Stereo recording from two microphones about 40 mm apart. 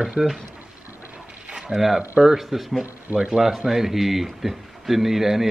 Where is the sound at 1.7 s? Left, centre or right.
Centre.